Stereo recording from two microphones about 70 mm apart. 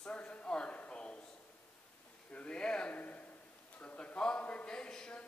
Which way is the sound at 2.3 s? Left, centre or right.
Centre.